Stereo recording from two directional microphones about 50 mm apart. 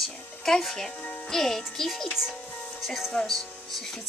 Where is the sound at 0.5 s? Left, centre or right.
Centre.